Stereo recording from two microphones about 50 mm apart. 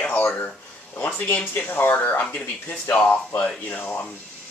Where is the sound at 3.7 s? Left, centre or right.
Left.